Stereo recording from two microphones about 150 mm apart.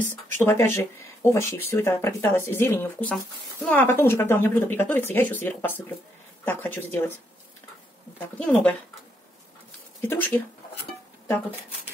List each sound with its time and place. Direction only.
0.4 s speech: 15° left (ahead or behind)
8.4 s speech: 10° left (ahead or behind)
10.0 s speech: 15° left (ahead or behind)